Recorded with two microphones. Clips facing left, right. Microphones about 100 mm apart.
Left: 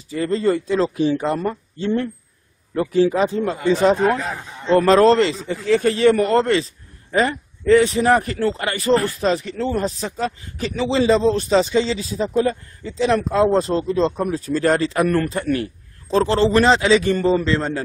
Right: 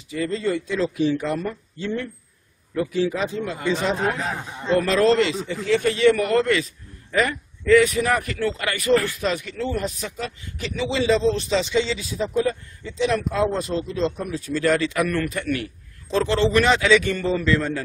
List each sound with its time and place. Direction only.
0.1 s a man's voice: 40° left (ahead or behind)
4.2 s speech: centre (ahead or behind)
4.7 s a man's voice: 35° left (ahead or behind)